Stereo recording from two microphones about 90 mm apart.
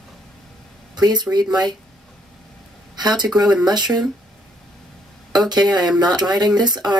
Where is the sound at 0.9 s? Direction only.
50° right (ahead or behind).